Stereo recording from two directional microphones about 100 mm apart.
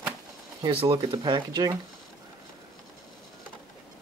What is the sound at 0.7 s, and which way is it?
Speech, 65° right (ahead or behind).